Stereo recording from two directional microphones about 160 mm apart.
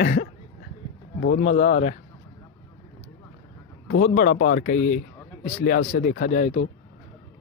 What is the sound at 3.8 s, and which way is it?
Speech, 65° left (ahead or behind).